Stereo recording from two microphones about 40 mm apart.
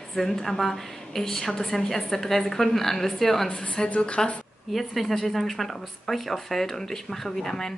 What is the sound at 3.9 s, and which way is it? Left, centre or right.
Speech, left.